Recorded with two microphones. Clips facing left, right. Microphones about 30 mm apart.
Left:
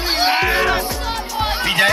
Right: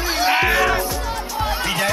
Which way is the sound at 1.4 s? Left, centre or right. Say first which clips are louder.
Left 5 dB; left.